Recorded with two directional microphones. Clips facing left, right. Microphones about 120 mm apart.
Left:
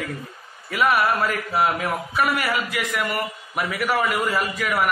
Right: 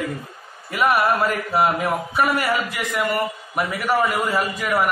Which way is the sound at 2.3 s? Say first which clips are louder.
Right 2 dB; 35° right (ahead or behind).